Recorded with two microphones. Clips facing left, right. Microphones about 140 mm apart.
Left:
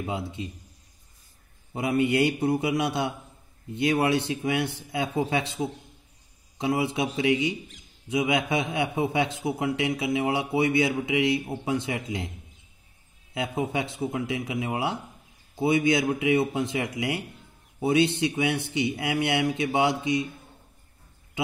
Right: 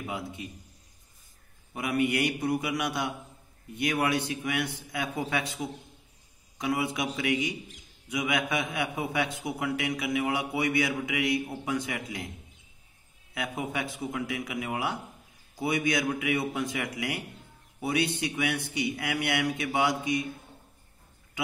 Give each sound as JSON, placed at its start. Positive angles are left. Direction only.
{"t": 0.0, "sound": "a man's voice", "side_deg": 25}
{"t": 1.7, "sound": "a man's voice", "side_deg": 25}
{"t": 13.3, "sound": "a man's voice", "side_deg": 25}